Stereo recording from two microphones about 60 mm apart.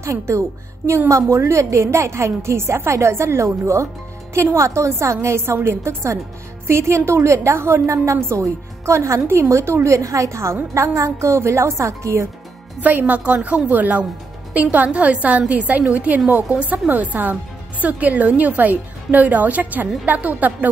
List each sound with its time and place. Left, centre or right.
0.0 s a woman's voice: right
12.8 s speech: right